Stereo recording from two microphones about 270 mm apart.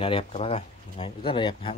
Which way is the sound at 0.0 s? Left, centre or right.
Left.